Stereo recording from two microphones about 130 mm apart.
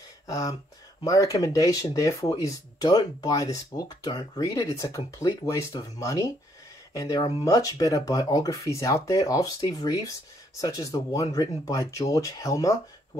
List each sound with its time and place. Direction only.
0.3 s speech: 25° left (ahead or behind)